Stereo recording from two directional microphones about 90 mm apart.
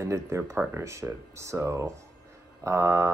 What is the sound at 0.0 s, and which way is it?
Speech, 30° right (ahead or behind).